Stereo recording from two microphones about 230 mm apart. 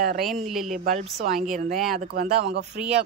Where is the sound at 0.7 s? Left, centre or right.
Right.